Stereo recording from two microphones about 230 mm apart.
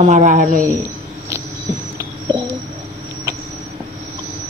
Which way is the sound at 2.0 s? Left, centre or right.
Centre.